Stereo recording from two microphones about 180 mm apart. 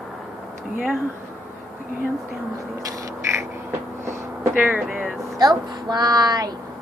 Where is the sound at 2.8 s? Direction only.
20° right (ahead or behind).